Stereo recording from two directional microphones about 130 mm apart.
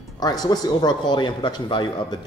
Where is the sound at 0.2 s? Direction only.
30° left (ahead or behind).